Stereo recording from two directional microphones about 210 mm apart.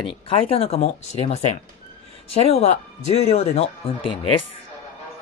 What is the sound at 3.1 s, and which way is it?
Speech, 30° left (ahead or behind).